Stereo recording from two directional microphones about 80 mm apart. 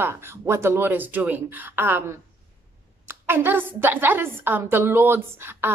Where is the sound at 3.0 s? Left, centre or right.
Right.